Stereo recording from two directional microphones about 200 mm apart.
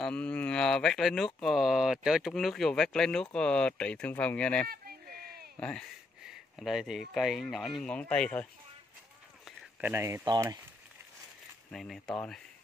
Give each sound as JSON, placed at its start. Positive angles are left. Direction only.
{"t": 0.0, "sound": "speech", "side_deg": 5}
{"t": 4.6, "sound": "a sound", "side_deg": -50}
{"t": 5.6, "sound": "speech", "side_deg": 5}
{"t": 9.4, "sound": "speech", "side_deg": -5}
{"t": 11.7, "sound": "speech", "side_deg": 0}